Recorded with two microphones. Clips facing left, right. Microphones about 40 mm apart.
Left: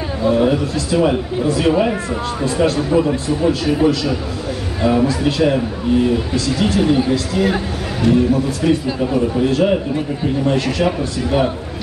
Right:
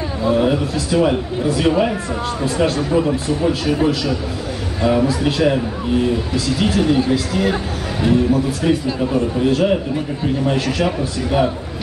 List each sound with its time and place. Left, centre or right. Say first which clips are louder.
0.2 s a man's voice: left 1 dB; centre